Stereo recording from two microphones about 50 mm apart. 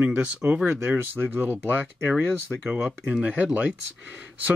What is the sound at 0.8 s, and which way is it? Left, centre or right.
Speech, right.